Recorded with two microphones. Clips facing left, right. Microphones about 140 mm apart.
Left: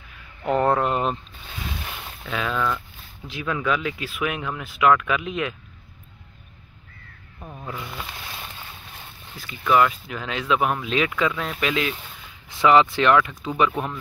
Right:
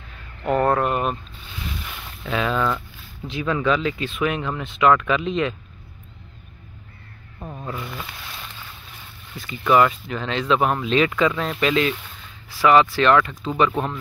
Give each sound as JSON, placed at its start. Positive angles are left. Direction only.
{"t": 0.5, "sound": "speech", "side_deg": 20}
{"t": 2.2, "sound": "speech", "side_deg": 0}
{"t": 7.3, "sound": "zipper", "side_deg": -15}
{"t": 9.4, "sound": "speech", "side_deg": 0}
{"t": 12.4, "sound": "speech", "side_deg": 20}
{"t": 13.7, "sound": "speech", "side_deg": -25}